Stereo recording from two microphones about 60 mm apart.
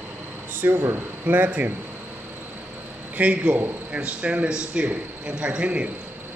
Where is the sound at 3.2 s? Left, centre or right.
Right.